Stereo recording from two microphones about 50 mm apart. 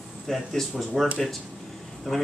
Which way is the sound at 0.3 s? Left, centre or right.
Centre.